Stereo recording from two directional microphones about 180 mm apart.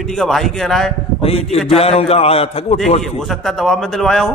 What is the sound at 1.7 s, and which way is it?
A man's voice, 30° left (ahead or behind).